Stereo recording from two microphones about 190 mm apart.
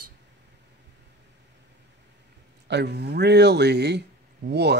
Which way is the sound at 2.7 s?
60° right (ahead or behind).